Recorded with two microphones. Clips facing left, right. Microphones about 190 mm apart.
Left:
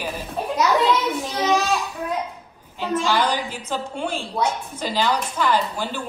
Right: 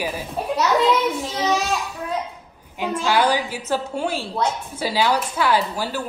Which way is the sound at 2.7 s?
10° right (ahead or behind).